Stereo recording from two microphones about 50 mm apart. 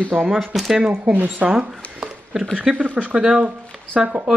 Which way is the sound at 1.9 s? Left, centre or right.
Centre.